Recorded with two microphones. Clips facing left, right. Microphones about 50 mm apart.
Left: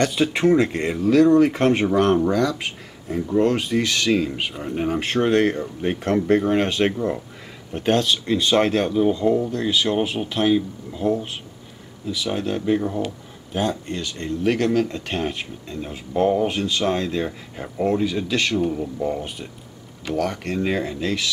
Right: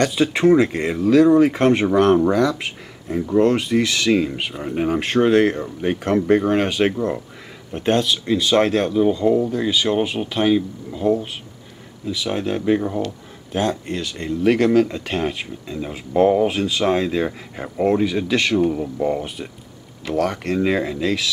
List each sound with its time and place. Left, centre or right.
0.0 s speech: centre
18.7 s speech: centre
19.2 s speech: centre